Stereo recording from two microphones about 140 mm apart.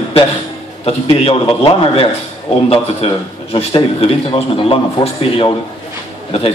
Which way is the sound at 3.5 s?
40° left (ahead or behind).